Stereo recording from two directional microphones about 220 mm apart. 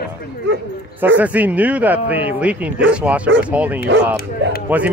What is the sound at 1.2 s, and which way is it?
Speech, 5° right (ahead or behind).